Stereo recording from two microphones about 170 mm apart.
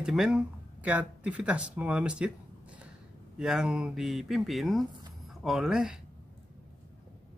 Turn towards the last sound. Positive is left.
turn(degrees=-5)  # may be behind; listen again after turning